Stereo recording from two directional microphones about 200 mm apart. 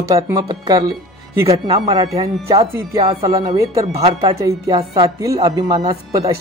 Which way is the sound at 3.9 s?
30° right (ahead or behind).